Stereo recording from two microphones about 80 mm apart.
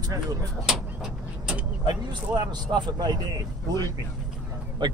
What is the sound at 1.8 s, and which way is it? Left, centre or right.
Speech, right.